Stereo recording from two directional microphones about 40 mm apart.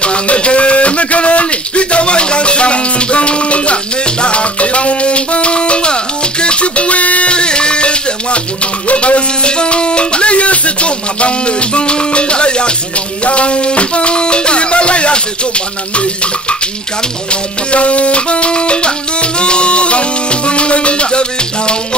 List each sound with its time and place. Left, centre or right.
0.0 s a sound: left
6.4 s music: left
17.3 s music: left